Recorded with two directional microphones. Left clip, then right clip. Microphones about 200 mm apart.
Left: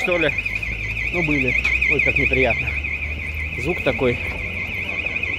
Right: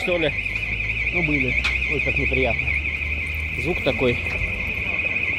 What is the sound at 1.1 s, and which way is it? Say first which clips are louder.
Speech: left 4 dB; 20° left (ahead or behind).